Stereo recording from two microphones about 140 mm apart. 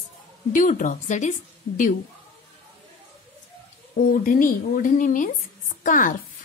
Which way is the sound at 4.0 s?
75° left (ahead or behind).